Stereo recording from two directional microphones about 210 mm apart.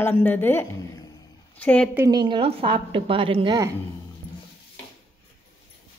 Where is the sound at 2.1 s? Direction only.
20° right (ahead or behind).